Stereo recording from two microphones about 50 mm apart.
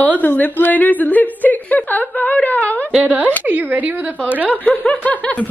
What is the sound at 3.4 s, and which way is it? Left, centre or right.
Speech, right.